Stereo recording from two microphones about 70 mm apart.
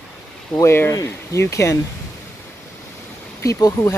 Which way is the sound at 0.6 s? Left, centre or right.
Left.